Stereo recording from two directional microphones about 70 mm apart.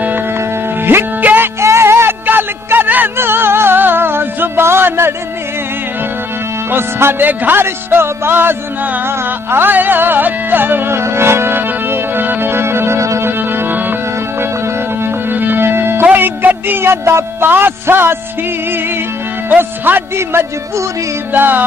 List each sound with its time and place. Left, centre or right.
0.8 s music: right
6.7 s speech: right
9.0 s music: right
13.4 s music: right
15.2 s music: right
19.5 s speech: right
21.3 s music: right